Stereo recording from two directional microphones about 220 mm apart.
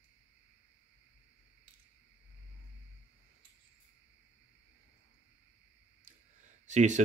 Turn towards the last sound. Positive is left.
turn(degrees=-35)  # may be behind; listen again after turning